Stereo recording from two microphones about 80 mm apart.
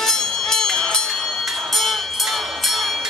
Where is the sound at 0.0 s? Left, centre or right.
Centre.